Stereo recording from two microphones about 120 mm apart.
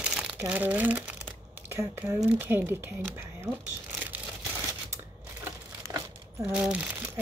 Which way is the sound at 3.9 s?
15° right (ahead or behind).